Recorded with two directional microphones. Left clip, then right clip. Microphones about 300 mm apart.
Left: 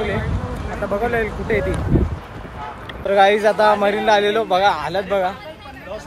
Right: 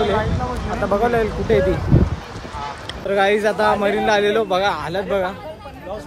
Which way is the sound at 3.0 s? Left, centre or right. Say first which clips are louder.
Left 3 dB; centre.